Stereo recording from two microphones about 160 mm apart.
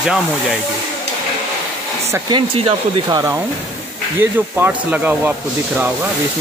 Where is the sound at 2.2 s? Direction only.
35° right (ahead or behind).